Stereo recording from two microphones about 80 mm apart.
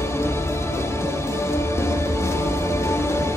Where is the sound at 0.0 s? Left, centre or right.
Left.